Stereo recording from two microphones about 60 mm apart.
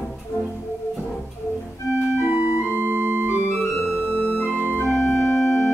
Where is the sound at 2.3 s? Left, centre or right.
Right.